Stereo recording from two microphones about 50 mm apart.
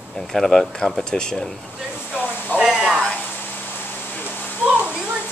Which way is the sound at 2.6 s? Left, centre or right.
Centre.